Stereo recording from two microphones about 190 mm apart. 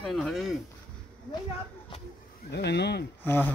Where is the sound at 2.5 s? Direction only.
65° left (ahead or behind).